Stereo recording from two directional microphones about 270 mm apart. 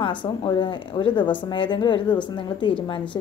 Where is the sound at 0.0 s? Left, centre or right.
Centre.